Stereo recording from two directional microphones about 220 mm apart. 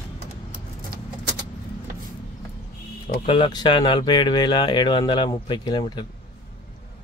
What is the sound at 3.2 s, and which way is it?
Speech, 25° left (ahead or behind).